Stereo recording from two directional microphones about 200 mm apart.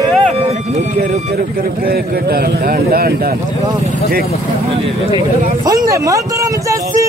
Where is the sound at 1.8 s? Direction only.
50° right (ahead or behind).